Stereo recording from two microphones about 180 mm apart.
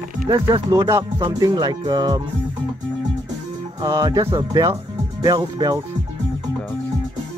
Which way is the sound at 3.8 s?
20° right (ahead or behind).